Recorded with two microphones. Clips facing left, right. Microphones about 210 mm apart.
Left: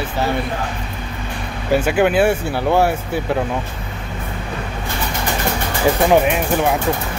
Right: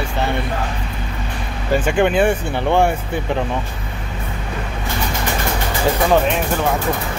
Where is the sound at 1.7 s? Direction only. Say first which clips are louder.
Left 1 dB; 5° left (ahead or behind).